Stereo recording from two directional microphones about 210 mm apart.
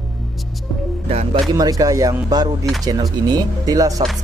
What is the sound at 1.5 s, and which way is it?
Speech, 15° right (ahead or behind).